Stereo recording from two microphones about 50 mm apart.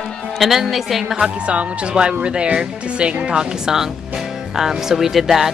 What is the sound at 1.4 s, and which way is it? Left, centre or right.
A woman's voice, right.